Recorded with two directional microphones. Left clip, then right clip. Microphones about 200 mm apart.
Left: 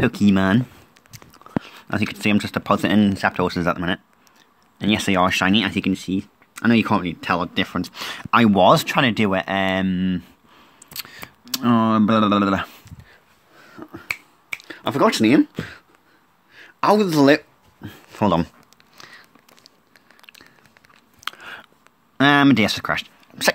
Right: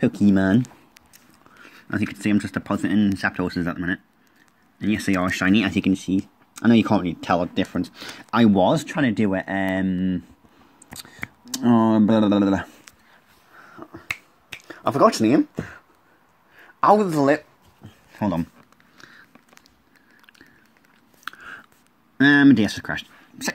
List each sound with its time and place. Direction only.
0.0 s speech: 30° left (ahead or behind)
1.6 s speech: 20° left (ahead or behind)
2.8 s speech: 35° left (ahead or behind)
3.2 s speech: 15° left (ahead or behind)
5.6 s speech: centre (ahead or behind)
7.5 s speech: 25° left (ahead or behind)
10.9 s speech: 25° left (ahead or behind)
14.6 s speech: 5° left (ahead or behind)
16.5 s speech: 15° left (ahead or behind)
20.2 s a sound: 15° left (ahead or behind)
21.2 s chewing: 15° left (ahead or behind)
22.1 s speech: 20° left (ahead or behind)